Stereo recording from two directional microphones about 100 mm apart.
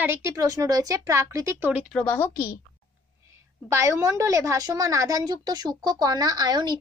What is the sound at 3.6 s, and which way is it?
A woman's voice, 25° right (ahead or behind).